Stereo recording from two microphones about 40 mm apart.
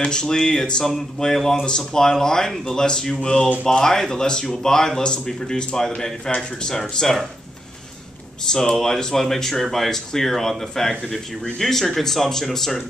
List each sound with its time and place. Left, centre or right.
0.0 s speech: centre
8.5 s speech: centre